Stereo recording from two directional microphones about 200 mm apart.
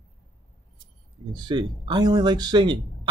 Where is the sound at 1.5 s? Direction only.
20° right (ahead or behind).